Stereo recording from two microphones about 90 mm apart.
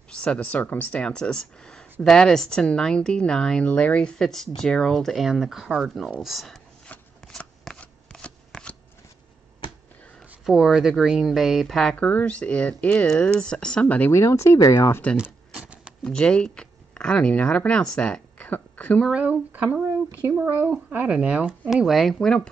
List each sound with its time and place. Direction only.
0.1 s speech: 10° left (ahead or behind)
6.9 s shuffling cards: 10° left (ahead or behind)
10.4 s speech: 5° right (ahead or behind); by 14.1 s 15° left (ahead or behind)
14.1 s speech: 30° left (ahead or behind)
15.1 s a sound: 10° right (ahead or behind)
16.0 s speech: 10° left (ahead or behind)
19.0 s speech: 15° right (ahead or behind)
21.7 s speech: centre (ahead or behind)